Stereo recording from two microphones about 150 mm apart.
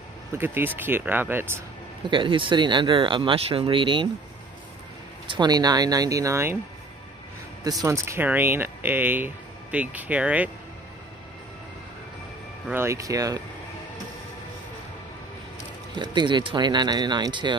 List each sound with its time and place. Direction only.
0.4 s speech: 15° right (ahead or behind)
2.0 s speech: 35° right (ahead or behind)
5.2 s speech: 30° right (ahead or behind); by 6.6 s 15° right (ahead or behind)
7.8 s speech: 20° right (ahead or behind)
12.7 s speech: 20° right (ahead or behind)
15.9 s speech: 30° right (ahead or behind)